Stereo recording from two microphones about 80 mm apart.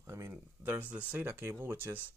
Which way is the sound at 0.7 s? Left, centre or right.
Right.